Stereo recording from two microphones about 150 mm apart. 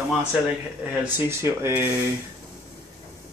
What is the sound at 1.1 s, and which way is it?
Speech, 15° right (ahead or behind).